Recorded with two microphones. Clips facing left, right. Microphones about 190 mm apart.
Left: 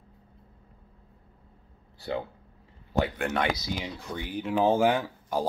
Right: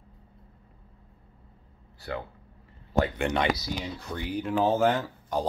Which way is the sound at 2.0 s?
25° left (ahead or behind).